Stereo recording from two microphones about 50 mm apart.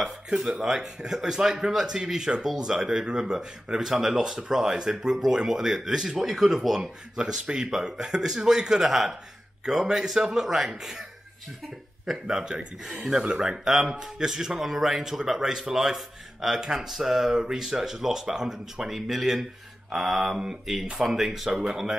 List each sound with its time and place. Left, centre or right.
0.0 s speech: centre
12.1 s speech: centre